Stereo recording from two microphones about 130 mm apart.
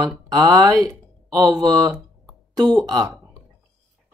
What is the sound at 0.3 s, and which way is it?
Speech, 30° right (ahead or behind).